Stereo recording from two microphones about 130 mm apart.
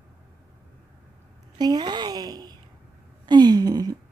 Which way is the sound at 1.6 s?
35° right (ahead or behind).